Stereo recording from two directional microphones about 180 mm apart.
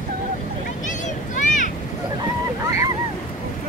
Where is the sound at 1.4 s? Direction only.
45° left (ahead or behind).